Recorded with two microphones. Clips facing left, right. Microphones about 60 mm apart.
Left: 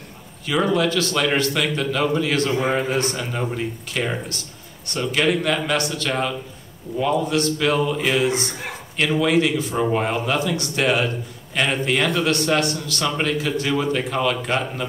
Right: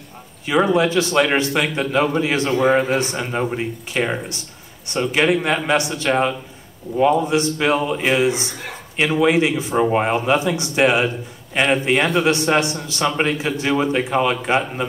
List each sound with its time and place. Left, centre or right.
0.7 s a man's voice: right